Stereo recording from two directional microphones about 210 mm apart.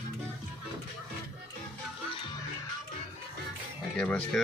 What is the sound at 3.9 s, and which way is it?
Speech, 5° left (ahead or behind).